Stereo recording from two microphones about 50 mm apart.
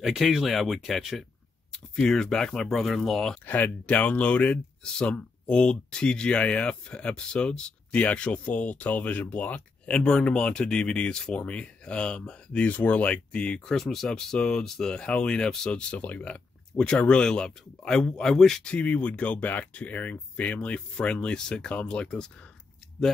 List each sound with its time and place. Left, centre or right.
0.0 s speech: centre
1.7 s speech: centre
3.4 s speech: left
4.8 s speech: centre
12.6 s speech: left
13.7 s speech: centre
18.6 s speech: left